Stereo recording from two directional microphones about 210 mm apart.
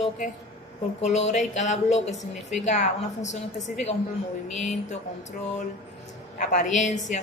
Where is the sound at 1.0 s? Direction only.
30° left (ahead or behind).